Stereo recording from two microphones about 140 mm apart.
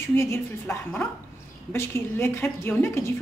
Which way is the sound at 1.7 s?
20° left (ahead or behind).